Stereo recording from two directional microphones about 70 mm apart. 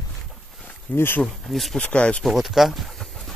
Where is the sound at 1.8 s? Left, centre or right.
Centre.